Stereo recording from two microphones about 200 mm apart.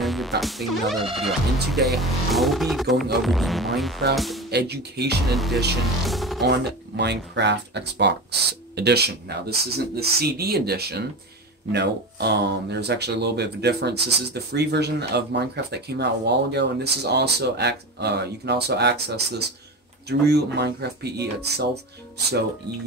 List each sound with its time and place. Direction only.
0.0 s speech: centre (ahead or behind)
4.5 s speech: 55° right (ahead or behind)
5.3 s speech: centre (ahead or behind)
6.4 s speech: 55° right (ahead or behind)